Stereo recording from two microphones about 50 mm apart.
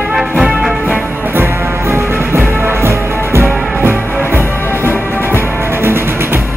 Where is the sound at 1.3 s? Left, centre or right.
Right.